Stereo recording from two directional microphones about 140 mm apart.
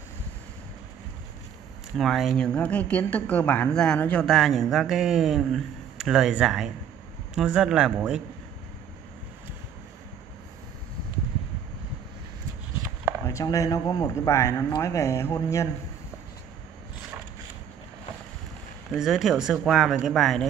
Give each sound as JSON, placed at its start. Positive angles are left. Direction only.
{"t": 2.0, "sound": "speech", "side_deg": 0}
{"t": 13.2, "sound": "speech", "side_deg": 20}
{"t": 18.9, "sound": "speech", "side_deg": -5}